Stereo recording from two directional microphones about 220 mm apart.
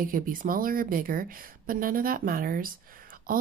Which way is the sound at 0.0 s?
40° right (ahead or behind).